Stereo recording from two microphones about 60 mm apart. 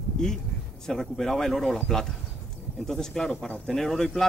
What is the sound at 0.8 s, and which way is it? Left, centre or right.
Speech, centre.